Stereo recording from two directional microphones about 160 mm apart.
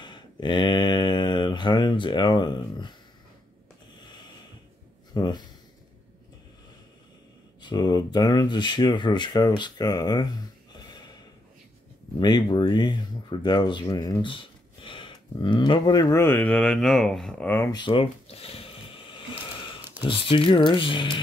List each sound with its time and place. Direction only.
0.0 s speech: 30° left (ahead or behind)
5.1 s speech: 25° left (ahead or behind)
7.6 s speech: 25° left (ahead or behind)
12.2 s speech: 25° left (ahead or behind); by 17.6 s 10° left (ahead or behind)
17.6 s a sound: 30° left (ahead or behind)
20.0 s speech: 35° left (ahead or behind)